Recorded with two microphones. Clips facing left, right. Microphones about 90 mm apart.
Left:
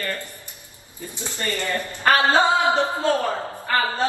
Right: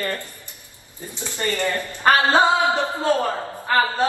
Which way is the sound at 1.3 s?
20° right (ahead or behind).